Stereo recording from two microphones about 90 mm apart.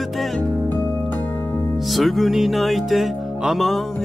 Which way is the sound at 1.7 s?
Centre (ahead or behind).